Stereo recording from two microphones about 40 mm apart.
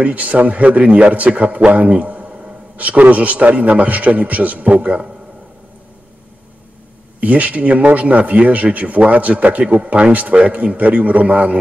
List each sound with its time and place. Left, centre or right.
0.0 s a man's voice: right
1.7 s a sound: right
2.7 s a man's voice: right
7.2 s a man's voice: right